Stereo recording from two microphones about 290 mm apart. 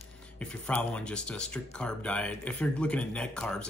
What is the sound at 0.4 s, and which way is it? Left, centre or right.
Speech, centre.